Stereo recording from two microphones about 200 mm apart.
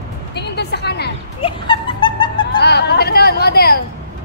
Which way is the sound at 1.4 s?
25° left (ahead or behind).